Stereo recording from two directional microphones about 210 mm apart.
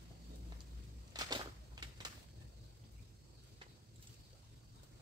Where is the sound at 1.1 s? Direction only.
20° right (ahead or behind).